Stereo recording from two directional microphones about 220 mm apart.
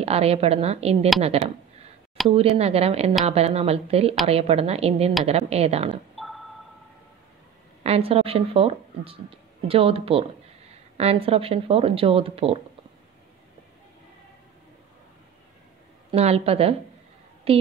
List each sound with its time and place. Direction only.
0.0 s speech: 25° right (ahead or behind)
6.1 s a sound: centre (ahead or behind)
7.8 s speech: 25° right (ahead or behind)
16.1 s speech: 25° right (ahead or behind)